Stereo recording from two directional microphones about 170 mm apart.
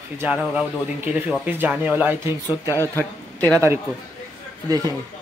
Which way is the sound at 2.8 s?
10° left (ahead or behind).